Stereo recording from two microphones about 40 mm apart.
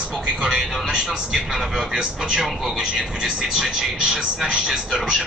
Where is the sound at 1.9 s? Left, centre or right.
Centre.